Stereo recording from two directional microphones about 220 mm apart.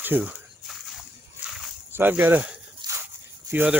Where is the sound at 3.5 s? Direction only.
10° right (ahead or behind).